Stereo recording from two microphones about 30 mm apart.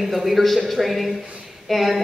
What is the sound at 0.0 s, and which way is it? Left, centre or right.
A man's voice, centre.